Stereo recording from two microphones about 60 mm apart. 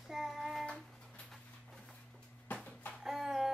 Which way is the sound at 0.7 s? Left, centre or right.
Centre.